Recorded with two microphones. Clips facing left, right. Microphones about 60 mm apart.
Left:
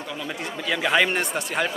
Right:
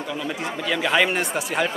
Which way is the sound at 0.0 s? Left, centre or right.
Centre.